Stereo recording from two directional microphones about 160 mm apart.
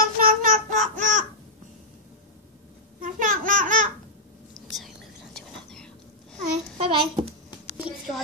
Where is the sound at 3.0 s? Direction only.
55° right (ahead or behind).